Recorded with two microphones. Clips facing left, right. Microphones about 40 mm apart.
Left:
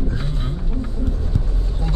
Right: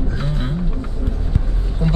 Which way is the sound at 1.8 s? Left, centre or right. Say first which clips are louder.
Right 8 dB; centre.